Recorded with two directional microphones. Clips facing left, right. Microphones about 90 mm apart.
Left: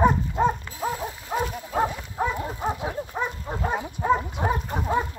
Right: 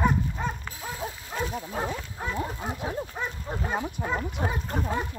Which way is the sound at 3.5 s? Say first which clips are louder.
Left 2 dB; 15° left (ahead or behind).